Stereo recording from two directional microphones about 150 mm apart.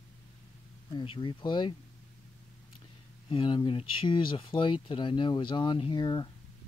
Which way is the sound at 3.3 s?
35° left (ahead or behind).